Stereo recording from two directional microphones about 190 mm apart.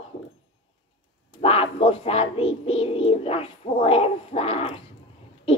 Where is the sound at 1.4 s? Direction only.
30° left (ahead or behind).